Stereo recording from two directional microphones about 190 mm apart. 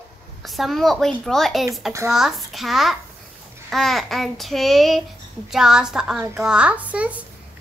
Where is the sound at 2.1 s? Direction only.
Centre (ahead or behind).